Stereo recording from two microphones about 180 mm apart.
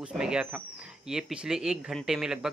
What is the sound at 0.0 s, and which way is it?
Speech, 5° right (ahead or behind).